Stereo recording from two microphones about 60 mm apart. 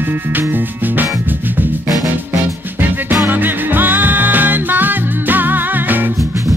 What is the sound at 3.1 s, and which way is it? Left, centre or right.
Music, right.